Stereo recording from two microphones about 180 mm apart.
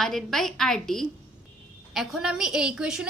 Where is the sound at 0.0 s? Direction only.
Centre (ahead or behind).